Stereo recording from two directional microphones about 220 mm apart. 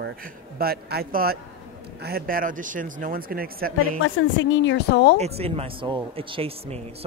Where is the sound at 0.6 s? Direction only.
45° right (ahead or behind).